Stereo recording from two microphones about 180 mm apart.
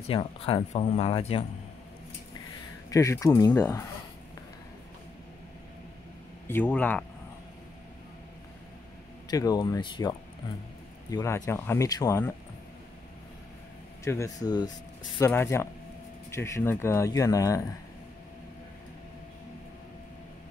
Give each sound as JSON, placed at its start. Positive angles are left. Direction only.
{"t": 0.0, "sound": "speech", "side_deg": 35}
{"t": 2.9, "sound": "speech", "side_deg": 15}
{"t": 6.4, "sound": "speech", "side_deg": 10}
{"t": 9.3, "sound": "speech", "side_deg": 20}
{"t": 14.0, "sound": "speech", "side_deg": 15}